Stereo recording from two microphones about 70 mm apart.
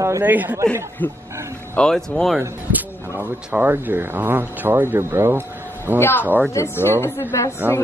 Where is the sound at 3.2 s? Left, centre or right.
Right.